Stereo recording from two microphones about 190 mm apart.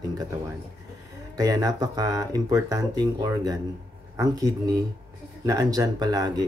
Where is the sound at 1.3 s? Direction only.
20° right (ahead or behind).